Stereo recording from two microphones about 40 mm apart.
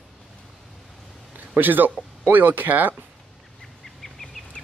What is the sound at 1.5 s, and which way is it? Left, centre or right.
Speech, right.